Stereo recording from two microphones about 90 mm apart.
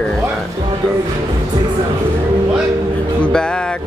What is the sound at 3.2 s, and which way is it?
Speech, 10° left (ahead or behind).